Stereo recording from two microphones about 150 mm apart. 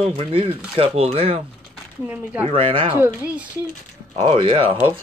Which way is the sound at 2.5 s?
35° right (ahead or behind).